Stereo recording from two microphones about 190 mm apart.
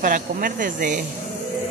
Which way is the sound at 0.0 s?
45° right (ahead or behind).